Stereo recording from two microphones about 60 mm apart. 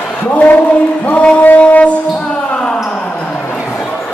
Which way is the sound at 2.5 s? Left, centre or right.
Centre.